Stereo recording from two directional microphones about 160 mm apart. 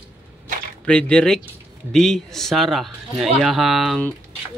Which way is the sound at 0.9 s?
5° left (ahead or behind).